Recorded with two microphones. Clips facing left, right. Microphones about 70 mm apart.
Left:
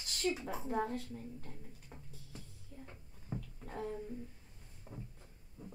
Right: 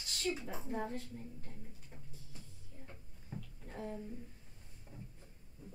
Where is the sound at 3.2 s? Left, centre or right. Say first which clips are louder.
Left 4 dB; left.